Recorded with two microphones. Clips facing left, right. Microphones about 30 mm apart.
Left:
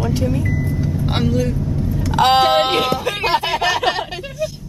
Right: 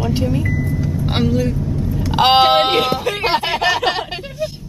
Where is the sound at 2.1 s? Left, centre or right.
Right.